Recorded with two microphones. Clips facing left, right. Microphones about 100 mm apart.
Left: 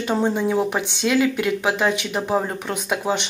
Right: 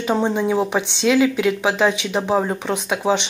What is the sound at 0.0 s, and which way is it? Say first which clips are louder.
Speech: right 1 dB; centre (ahead or behind).